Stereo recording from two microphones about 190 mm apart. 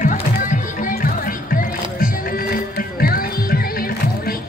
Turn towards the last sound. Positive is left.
turn(degrees=50)  # may be behind; listen again after turning